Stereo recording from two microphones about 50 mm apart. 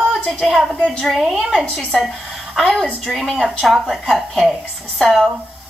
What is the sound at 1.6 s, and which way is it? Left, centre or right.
Speech, left.